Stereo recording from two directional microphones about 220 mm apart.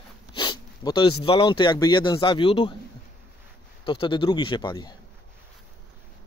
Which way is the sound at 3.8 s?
20° left (ahead or behind).